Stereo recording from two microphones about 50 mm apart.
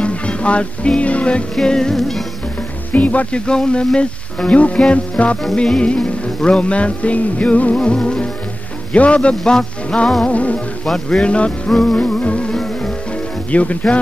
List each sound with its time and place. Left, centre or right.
0.0 s music: left
1.5 s music: centre
2.9 s music: left
9.4 s speech: centre
10.2 s music: left
13.5 s music: left